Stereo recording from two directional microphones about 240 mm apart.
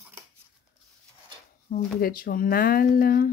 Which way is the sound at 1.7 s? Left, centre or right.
Left.